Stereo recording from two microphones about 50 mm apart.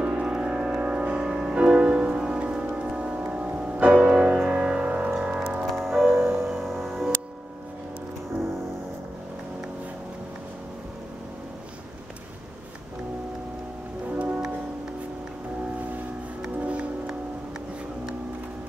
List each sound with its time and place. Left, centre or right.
0.0 s music: centre
5.7 s music: centre
14.1 s music: right
16.4 s music: right